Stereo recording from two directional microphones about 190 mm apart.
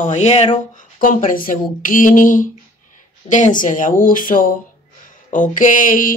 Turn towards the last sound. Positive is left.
turn(degrees=45)  # may be behind; listen again after turning